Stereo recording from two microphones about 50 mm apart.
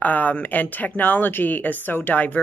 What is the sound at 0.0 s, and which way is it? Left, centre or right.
Speech, left.